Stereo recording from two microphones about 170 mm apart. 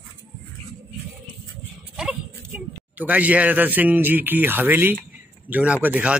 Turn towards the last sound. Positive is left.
turn(degrees=-10)  # may be behind; listen again after turning